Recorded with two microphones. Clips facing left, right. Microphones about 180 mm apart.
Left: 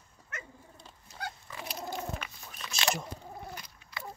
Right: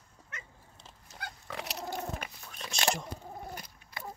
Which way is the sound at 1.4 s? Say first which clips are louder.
Right 2 dB; 75° right (ahead or behind).